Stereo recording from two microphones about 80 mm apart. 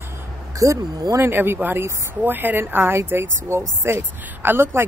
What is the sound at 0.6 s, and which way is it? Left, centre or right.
Speech, right.